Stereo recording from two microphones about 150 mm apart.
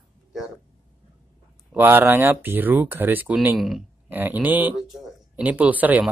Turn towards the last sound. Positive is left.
turn(degrees=-10)  # may be behind; listen again after turning